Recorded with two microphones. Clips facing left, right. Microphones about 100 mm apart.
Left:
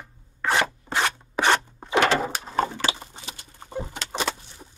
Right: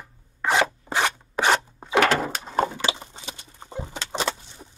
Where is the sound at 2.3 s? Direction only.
Centre (ahead or behind).